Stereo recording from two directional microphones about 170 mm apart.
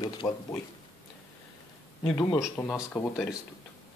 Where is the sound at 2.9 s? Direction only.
Centre (ahead or behind).